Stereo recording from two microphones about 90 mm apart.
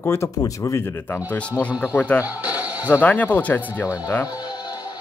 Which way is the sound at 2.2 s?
20° right (ahead or behind).